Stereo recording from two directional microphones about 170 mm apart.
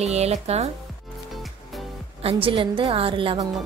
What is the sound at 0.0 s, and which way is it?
Speech, 40° right (ahead or behind).